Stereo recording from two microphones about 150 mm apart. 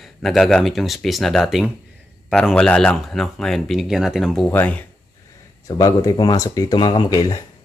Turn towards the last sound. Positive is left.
turn(degrees=25)  # may be behind; listen again after turning